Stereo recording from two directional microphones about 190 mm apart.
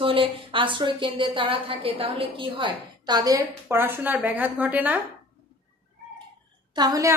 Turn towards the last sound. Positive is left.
turn(degrees=-20)  # may be behind; listen again after turning